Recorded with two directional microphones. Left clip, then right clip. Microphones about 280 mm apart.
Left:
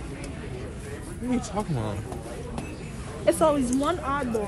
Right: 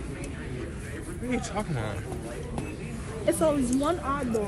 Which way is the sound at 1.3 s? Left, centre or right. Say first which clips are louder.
Left 2 dB; centre.